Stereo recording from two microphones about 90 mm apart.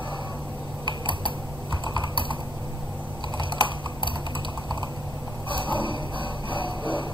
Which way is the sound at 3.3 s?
65° right (ahead or behind).